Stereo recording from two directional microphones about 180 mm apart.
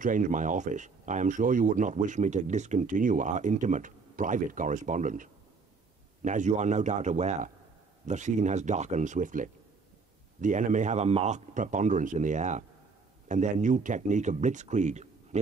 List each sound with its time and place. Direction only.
0.0 s a man's voice: 45° right (ahead or behind)